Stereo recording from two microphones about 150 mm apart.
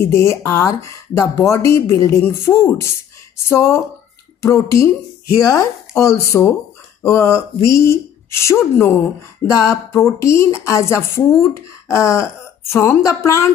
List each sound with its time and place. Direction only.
0.0 s a woman's voice: 20° left (ahead or behind)